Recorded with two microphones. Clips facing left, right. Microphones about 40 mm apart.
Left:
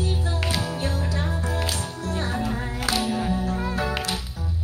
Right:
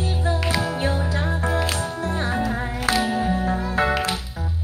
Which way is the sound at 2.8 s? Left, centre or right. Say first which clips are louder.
Right 3 dB; right.